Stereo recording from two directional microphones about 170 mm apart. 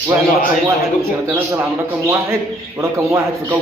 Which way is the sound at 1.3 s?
15° right (ahead or behind).